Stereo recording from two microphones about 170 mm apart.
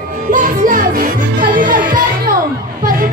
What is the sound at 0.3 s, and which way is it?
Music, 50° right (ahead or behind).